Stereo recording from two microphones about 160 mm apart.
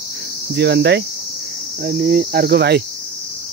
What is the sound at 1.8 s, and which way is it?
Cricket, 75° right (ahead or behind).